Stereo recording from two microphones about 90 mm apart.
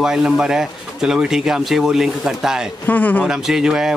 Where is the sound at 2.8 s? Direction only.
20° left (ahead or behind).